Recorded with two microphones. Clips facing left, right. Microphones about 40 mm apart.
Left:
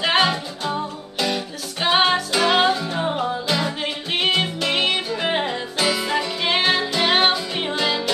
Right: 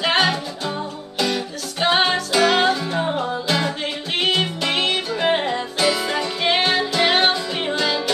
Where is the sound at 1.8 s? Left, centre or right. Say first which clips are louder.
Even; centre.